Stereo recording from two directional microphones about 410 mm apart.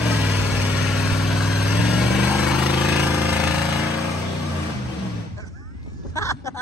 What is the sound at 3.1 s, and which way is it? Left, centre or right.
Jackhammer, centre.